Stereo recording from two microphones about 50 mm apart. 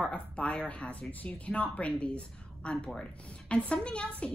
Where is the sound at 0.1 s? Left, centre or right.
Left.